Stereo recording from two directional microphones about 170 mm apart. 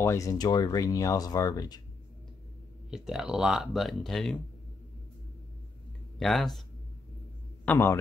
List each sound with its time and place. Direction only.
0.0 s speech: 20° left (ahead or behind)
2.9 s speech: 5° right (ahead or behind)
6.1 s speech: centre (ahead or behind)
7.6 s a man's voice: 15° left (ahead or behind)